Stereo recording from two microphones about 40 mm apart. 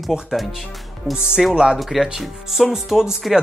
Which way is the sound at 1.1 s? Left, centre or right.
Left.